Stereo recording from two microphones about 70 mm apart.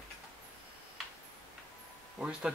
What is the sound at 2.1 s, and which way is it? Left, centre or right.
Speech, centre.